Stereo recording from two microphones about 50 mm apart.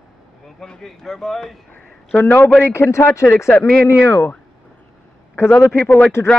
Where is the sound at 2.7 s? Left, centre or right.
Left.